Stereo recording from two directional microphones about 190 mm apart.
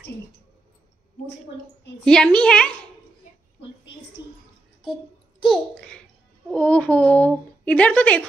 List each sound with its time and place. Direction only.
2.0 s a woman's voice: 5° left (ahead or behind)
5.4 s a child's voice: 5° left (ahead or behind)